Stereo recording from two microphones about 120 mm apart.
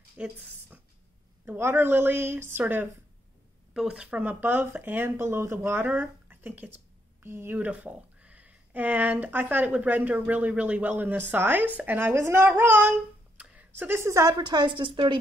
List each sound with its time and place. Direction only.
0.2 s speech: 10° right (ahead or behind)
1.4 s speech: 15° right (ahead or behind)
3.7 s a woman's voice: 5° right (ahead or behind); by 15.1 s 40° right (ahead or behind)